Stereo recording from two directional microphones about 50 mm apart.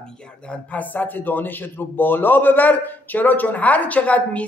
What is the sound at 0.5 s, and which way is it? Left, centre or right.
A man's voice, left.